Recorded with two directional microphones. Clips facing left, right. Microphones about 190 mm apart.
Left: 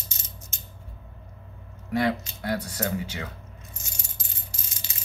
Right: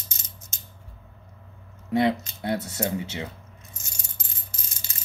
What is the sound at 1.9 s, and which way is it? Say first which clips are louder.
Coin: right 3 dB; 25° right (ahead or behind).